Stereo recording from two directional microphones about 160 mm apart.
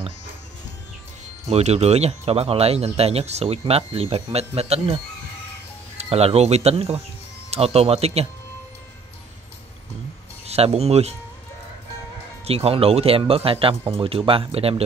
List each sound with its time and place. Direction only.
1.5 s speech: 40° right (ahead or behind)
10.4 s speech: 40° right (ahead or behind)
12.4 s speech: 35° right (ahead or behind)